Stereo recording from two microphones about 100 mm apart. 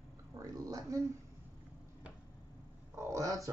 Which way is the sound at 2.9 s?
30° right (ahead or behind).